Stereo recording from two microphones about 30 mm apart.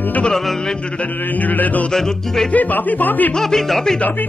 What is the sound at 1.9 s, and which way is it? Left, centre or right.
Music, centre.